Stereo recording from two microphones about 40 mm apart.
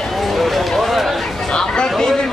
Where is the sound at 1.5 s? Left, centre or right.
Centre.